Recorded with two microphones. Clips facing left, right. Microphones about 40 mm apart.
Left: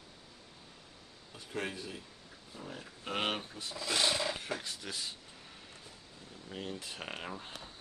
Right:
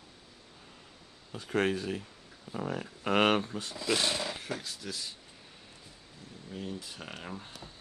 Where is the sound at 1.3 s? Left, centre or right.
Right.